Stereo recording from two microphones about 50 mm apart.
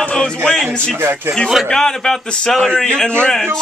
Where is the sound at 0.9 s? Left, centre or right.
Right.